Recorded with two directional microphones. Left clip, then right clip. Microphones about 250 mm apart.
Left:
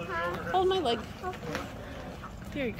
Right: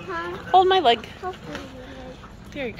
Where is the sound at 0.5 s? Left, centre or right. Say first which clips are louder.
Right 12 dB; right.